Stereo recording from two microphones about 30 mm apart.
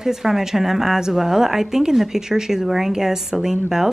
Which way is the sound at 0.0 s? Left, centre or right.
Centre.